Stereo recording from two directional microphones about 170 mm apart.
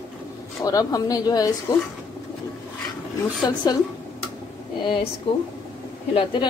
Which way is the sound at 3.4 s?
25° left (ahead or behind).